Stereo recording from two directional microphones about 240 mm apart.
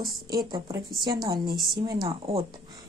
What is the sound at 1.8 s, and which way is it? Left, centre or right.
Speech, centre.